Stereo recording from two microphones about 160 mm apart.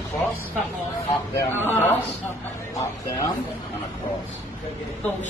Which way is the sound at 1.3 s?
15° left (ahead or behind).